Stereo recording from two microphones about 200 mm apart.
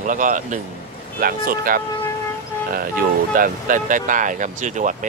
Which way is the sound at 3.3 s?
45° right (ahead or behind).